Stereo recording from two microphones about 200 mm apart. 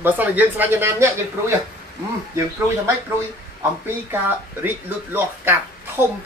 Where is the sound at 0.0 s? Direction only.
10° right (ahead or behind).